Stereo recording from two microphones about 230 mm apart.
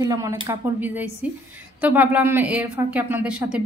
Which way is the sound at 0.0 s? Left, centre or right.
Centre.